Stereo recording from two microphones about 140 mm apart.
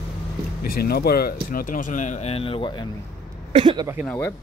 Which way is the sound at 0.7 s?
90° left.